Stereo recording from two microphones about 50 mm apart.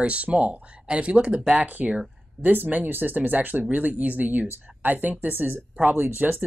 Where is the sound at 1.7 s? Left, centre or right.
Right.